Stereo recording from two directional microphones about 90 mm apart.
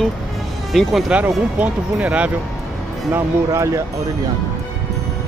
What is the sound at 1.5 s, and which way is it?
Speech, 15° right (ahead or behind).